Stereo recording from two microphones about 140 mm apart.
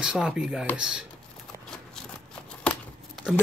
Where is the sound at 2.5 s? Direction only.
5° left (ahead or behind).